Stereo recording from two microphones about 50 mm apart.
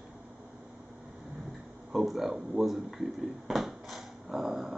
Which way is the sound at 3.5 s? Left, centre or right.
Centre.